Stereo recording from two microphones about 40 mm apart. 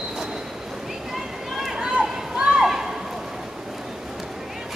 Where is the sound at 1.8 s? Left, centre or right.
Centre.